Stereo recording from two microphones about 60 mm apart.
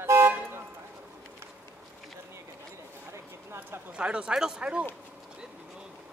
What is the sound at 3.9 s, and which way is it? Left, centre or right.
Speech, centre.